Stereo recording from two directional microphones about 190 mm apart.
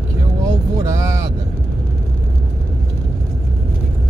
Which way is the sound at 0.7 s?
15° right (ahead or behind).